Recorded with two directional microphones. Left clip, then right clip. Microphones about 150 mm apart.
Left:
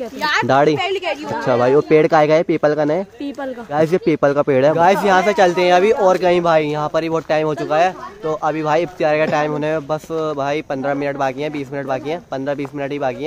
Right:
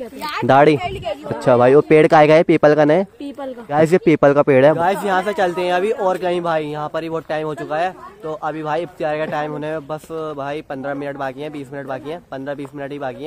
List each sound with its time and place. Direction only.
0.5 s speech: 30° right (ahead or behind)
0.7 s a woman's voice: 60° left (ahead or behind)
1.4 s speech: 25° right (ahead or behind)
5.0 s speech: 5° left (ahead or behind)